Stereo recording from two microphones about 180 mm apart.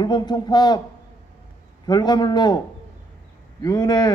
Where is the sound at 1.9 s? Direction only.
25° left (ahead or behind).